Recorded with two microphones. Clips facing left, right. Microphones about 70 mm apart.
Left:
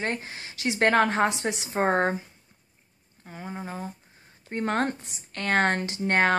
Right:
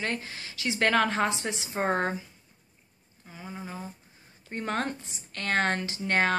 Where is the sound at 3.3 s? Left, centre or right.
Left.